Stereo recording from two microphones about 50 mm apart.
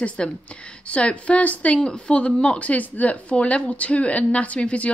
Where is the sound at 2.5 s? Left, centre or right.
Left.